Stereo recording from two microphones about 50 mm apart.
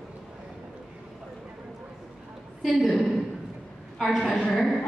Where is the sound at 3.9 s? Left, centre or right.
Centre.